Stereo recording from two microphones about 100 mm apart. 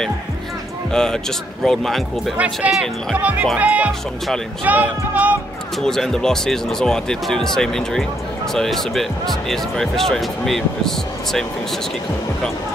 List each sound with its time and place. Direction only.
0.9 s speech: 5° left (ahead or behind)
2.3 s speech: 15° right (ahead or behind)
2.7 s speech: centre (ahead or behind)
3.2 s speech: 15° right (ahead or behind)
5.8 s speech: 5° left (ahead or behind)